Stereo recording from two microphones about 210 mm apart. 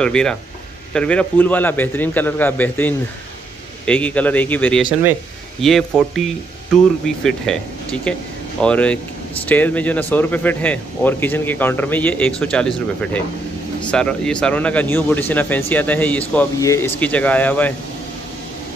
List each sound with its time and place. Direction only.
0.0 s speech: 5° left (ahead or behind)